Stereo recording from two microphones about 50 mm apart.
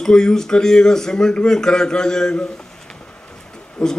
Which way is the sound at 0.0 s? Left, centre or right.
Centre.